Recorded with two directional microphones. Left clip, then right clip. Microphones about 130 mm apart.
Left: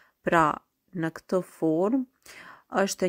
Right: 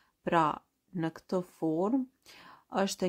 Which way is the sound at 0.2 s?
25° left (ahead or behind).